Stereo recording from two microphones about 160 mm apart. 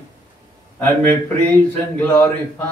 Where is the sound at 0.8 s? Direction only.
10° left (ahead or behind).